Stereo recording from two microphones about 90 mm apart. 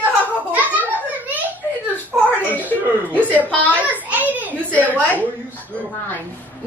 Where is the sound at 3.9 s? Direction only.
20° right (ahead or behind).